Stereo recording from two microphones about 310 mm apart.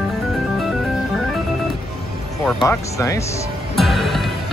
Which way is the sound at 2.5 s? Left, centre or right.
Centre.